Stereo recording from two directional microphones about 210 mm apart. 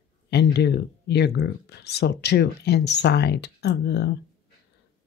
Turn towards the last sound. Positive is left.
turn(degrees=55)  # may be behind; listen again after turning